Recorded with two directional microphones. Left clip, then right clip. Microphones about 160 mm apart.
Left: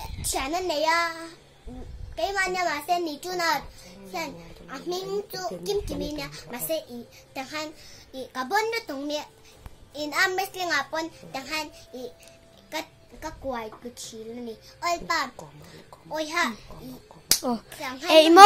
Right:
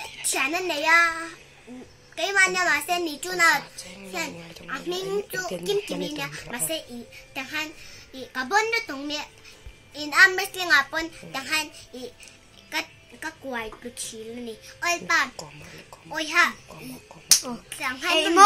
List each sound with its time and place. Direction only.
0.2 s a child's voice: 10° left (ahead or behind)
2.1 s a child's voice: 5° left (ahead or behind)